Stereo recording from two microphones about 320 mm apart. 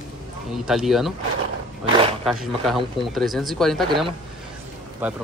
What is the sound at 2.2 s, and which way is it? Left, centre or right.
Speech, centre.